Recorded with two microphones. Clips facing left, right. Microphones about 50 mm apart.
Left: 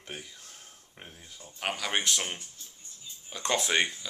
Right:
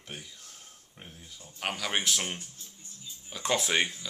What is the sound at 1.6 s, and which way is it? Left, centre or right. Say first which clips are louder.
Speech: left 1 dB; centre.